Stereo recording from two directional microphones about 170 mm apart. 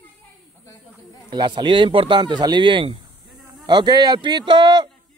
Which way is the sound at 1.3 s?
25° right (ahead or behind).